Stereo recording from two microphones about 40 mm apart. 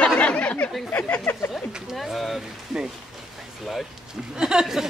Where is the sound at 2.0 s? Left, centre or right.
Centre.